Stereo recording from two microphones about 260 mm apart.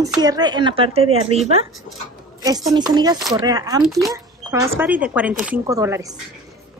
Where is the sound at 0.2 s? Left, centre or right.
Centre.